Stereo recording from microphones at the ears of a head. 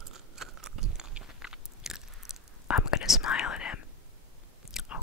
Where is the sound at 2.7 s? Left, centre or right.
Left.